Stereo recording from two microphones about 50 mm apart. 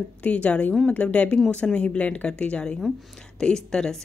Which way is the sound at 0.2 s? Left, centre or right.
Left.